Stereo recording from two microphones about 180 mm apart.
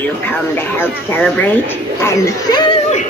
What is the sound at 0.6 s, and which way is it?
Speech, 10° left (ahead or behind).